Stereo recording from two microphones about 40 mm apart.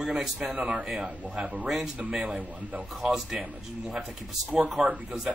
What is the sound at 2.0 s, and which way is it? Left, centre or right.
Speech, right.